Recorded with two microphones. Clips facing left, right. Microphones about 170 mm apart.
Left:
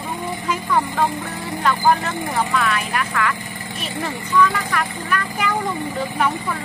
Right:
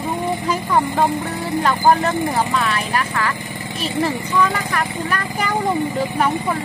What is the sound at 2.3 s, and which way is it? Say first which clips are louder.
Speech: right 1 dB; 30° right (ahead or behind).